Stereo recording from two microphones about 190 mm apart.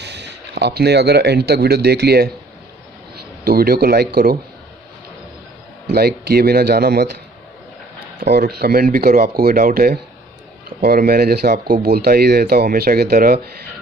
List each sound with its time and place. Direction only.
0.0 s speech: 65° right (ahead or behind)
3.4 s speech: 55° right (ahead or behind)
5.9 s speech: 55° right (ahead or behind)
8.2 s speech: 60° right (ahead or behind)